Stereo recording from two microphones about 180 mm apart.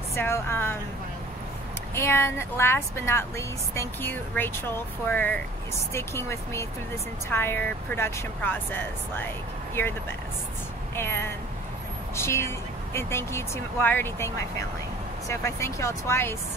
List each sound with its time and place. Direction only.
0.1 s speech: 15° left (ahead or behind)
2.0 s speech: 15° left (ahead or behind)
11.0 s speech: 15° left (ahead or behind)